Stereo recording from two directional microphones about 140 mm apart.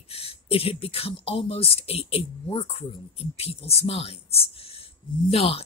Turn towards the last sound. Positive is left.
turn(degrees=45)  # may be behind; listen again after turning